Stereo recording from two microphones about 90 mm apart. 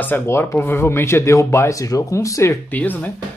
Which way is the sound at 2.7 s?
20° left (ahead or behind).